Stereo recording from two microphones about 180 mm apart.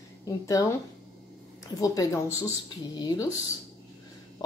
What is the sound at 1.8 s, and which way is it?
A woman's voice, 20° left (ahead or behind).